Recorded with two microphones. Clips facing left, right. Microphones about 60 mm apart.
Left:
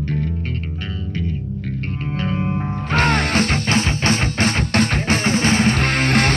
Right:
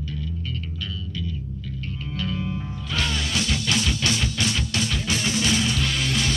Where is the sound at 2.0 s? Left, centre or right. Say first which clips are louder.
Left 6 dB; left.